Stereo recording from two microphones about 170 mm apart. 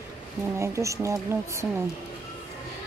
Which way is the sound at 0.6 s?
15° right (ahead or behind).